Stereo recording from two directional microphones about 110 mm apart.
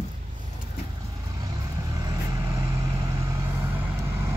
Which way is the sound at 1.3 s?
35° right (ahead or behind).